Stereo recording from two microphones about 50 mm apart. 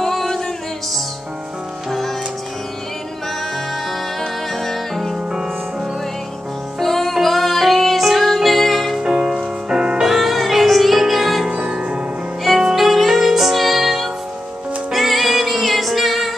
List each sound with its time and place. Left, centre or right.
0.0 s music: centre
4.2 s music: centre
5.3 s music: centre
6.8 s music: centre
9.0 s music: centre
10.0 s music: centre
11.4 s music: centre
12.4 s music: centre